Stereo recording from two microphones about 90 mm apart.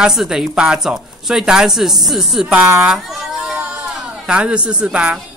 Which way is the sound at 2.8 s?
5° right (ahead or behind).